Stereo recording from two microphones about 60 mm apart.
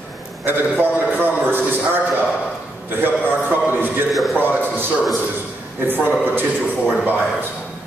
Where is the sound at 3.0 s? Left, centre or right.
Right.